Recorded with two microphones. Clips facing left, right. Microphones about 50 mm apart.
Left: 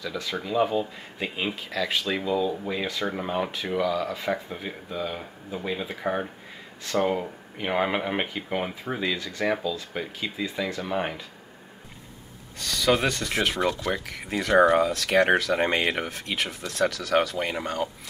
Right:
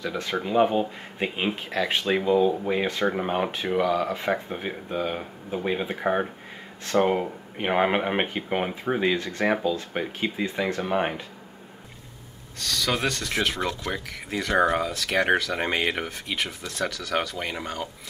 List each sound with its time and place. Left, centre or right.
0.0 s speech: right
12.5 s speech: centre